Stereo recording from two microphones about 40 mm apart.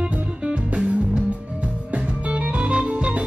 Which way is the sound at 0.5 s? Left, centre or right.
Centre.